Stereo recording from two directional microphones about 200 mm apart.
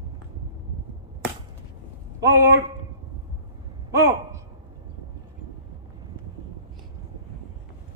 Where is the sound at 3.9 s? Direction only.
15° right (ahead or behind).